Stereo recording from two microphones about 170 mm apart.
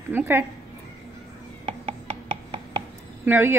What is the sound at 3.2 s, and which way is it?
Speech, 10° right (ahead or behind).